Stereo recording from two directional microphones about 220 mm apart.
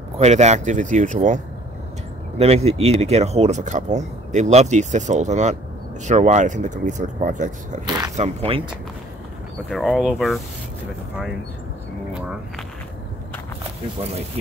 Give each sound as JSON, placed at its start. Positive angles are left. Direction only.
{"t": 0.2, "sound": "speech", "side_deg": -30}
{"t": 9.7, "sound": "speech", "side_deg": 0}
{"t": 12.1, "sound": "a sound", "side_deg": -5}